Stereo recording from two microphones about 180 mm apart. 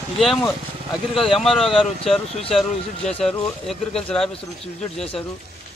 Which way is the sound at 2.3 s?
35° left (ahead or behind).